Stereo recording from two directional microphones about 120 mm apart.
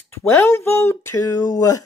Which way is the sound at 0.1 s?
20° left (ahead or behind).